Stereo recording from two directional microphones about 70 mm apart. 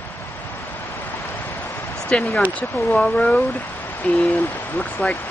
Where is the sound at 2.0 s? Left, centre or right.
Centre.